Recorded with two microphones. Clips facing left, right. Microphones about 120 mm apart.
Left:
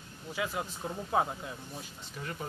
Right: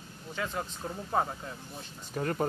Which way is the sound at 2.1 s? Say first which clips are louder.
Right 9 dB; 50° right (ahead or behind).